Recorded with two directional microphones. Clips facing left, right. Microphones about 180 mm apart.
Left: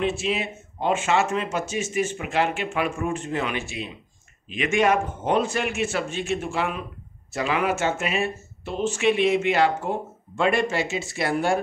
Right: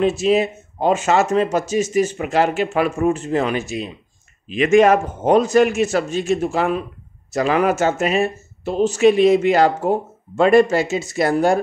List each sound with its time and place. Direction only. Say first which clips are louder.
0.0 s speech: right 9 dB; 40° right (ahead or behind)